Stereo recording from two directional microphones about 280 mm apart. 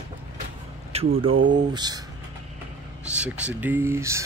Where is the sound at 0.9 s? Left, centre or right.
Right.